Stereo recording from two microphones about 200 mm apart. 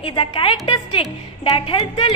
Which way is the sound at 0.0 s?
25° left (ahead or behind).